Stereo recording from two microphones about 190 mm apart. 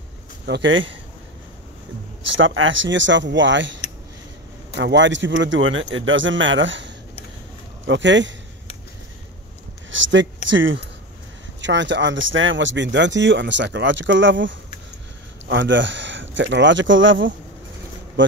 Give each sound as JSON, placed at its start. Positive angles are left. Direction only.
{"t": 0.5, "sound": "speech", "side_deg": -75}
{"t": 2.3, "sound": "speech", "side_deg": -90}
{"t": 4.7, "sound": "speech", "side_deg": -70}
{"t": 9.8, "sound": "speech", "side_deg": -80}
{"t": 11.6, "sound": "speech", "side_deg": -70}